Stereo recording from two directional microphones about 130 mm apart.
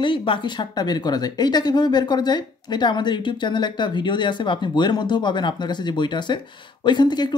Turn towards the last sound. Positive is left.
turn(degrees=35)  # may be behind; listen again after turning